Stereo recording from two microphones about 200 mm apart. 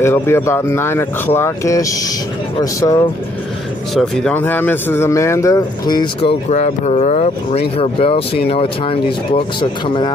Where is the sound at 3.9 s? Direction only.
Centre (ahead or behind).